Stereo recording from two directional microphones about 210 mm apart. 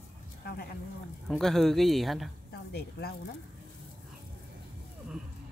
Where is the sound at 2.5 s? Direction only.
50° left (ahead or behind).